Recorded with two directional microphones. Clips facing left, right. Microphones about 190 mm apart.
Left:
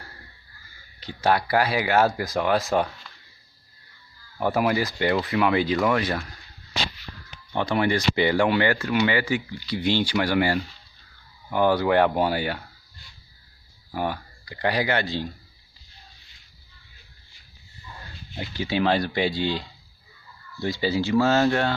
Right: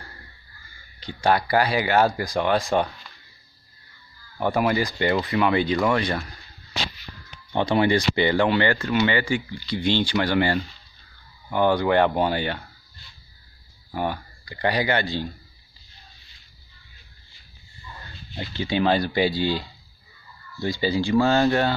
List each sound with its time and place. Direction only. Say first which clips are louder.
0.9 s speech: right 1 dB; 5° left (ahead or behind)
4.4 s speech: right 1 dB; 5° left (ahead or behind)
7.5 s speech: right 3 dB; 25° right (ahead or behind)
8.2 s speech: left 1 dB; 5° left (ahead or behind)
13.9 s speech: right 1 dB; centre (ahead or behind)
18.3 s speech: right 1 dB; 10° left (ahead or behind)